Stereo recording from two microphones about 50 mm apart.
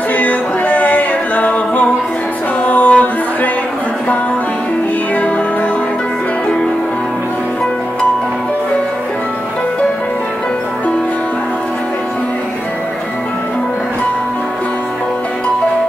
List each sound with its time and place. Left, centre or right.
0.1 s a capella: left
2.6 s music: left